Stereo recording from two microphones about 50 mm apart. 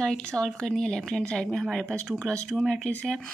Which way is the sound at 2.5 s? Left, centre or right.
Centre.